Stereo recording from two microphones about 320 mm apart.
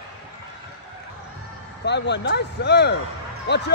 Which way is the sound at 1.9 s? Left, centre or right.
Left.